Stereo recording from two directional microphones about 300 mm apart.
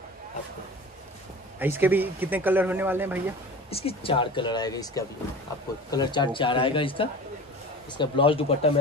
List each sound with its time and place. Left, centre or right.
1.6 s speech: centre
3.7 s speech: centre